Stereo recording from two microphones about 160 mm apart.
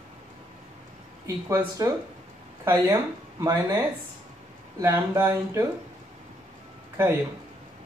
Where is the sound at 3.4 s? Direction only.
20° right (ahead or behind).